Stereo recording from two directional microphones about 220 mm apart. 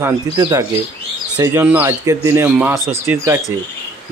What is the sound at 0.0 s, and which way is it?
Speech, 15° right (ahead or behind).